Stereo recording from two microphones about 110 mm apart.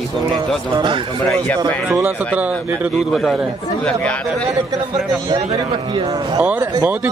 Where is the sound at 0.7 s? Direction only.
45° right (ahead or behind).